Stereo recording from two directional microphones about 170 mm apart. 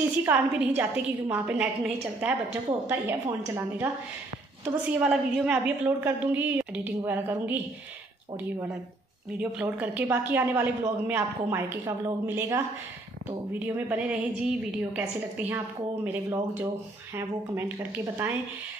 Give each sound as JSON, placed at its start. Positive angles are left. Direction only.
{"t": 0.2, "sound": "a woman's voice", "side_deg": -10}
{"t": 9.4, "sound": "a woman's voice", "side_deg": -10}
{"t": 13.7, "sound": "a woman's voice", "side_deg": -10}